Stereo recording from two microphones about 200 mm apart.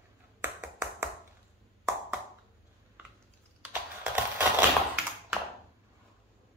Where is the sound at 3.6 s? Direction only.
5° right (ahead or behind).